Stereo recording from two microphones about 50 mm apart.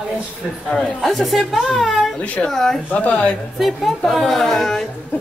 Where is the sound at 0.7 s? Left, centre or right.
Centre.